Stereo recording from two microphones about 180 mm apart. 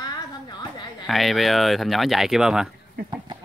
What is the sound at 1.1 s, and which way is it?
Speech, centre (ahead or behind).